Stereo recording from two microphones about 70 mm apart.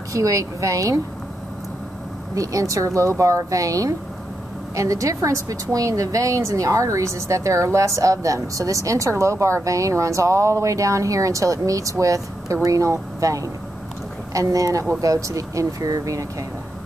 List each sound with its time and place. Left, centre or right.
0.1 s a woman's voice: right
2.3 s a woman's voice: right